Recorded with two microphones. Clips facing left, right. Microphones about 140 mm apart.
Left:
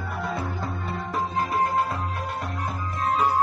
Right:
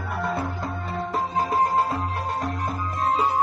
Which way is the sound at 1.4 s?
25° right (ahead or behind).